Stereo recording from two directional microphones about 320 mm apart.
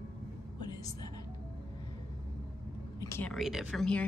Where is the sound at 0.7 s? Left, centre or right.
Centre.